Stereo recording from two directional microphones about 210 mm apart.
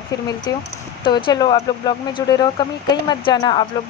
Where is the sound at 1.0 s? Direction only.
20° left (ahead or behind).